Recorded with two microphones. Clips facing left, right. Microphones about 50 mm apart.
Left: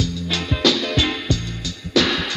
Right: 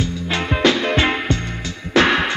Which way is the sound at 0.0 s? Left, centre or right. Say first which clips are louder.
Right 2 dB; right.